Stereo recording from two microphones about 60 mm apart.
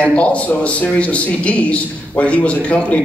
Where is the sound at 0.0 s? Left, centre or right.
Left.